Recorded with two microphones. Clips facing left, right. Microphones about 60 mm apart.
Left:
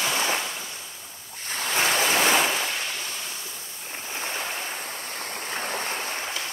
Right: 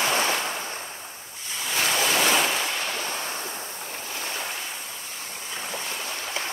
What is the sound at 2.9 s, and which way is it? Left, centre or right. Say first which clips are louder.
Waves: right 4 dB; right.